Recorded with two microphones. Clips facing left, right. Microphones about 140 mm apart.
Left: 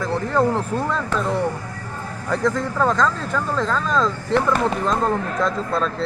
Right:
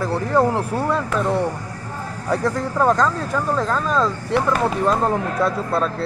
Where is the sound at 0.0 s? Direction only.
10° right (ahead or behind).